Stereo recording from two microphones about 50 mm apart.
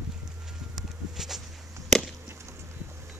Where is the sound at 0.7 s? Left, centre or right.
Centre.